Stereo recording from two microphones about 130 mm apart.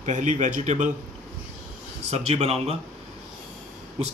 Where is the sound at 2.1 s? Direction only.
55° right (ahead or behind).